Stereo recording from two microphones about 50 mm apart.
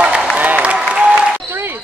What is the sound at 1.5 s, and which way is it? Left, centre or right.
Basketball bounce, right.